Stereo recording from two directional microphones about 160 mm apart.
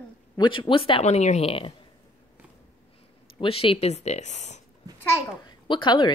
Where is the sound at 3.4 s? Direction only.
35° left (ahead or behind).